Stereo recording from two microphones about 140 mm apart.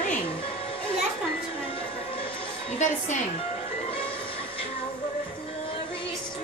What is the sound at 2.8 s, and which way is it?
Speech, 60° left (ahead or behind).